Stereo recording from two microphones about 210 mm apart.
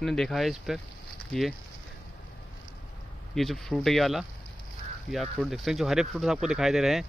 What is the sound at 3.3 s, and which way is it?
Speech, centre (ahead or behind).